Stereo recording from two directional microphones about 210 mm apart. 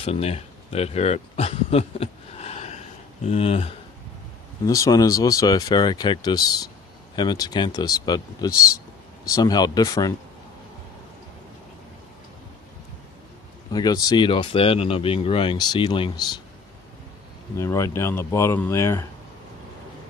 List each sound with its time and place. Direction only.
0.0 s speech: 30° left (ahead or behind)
4.6 s speech: 15° left (ahead or behind)
13.7 s speech: 20° left (ahead or behind)
17.6 s speech: 15° left (ahead or behind)